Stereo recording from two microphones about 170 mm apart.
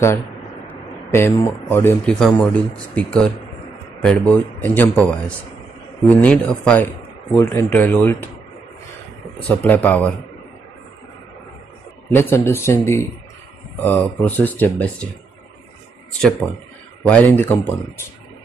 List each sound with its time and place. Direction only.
0.7 s speech: 10° left (ahead or behind)
9.5 s speech: 10° left (ahead or behind)
12.1 s speech: 15° left (ahead or behind)
16.2 s speech: 5° left (ahead or behind)